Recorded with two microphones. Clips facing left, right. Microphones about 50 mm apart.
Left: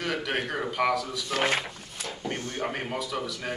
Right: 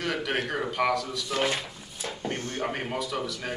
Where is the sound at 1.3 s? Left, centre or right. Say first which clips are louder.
Left 1 dB; left.